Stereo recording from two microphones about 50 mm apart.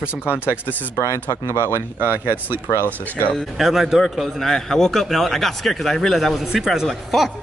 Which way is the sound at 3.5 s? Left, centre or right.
Centre.